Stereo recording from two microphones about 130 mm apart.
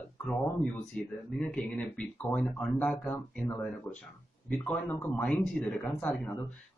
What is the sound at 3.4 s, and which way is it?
Speech, 15° left (ahead or behind).